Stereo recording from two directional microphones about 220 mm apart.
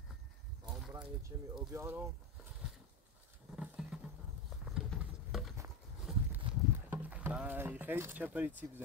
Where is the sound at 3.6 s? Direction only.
5° right (ahead or behind).